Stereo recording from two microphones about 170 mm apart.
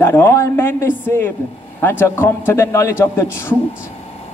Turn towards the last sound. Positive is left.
turn(degrees=15)  # may be behind; listen again after turning